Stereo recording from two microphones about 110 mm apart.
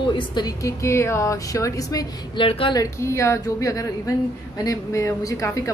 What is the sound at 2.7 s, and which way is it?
A woman's voice, 25° left (ahead or behind).